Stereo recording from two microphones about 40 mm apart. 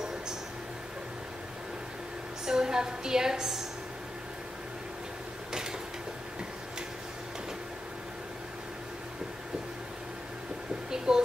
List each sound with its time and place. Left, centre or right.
2.4 s a woman's voice: centre
5.5 s mechanisms: centre
10.9 s a sound: centre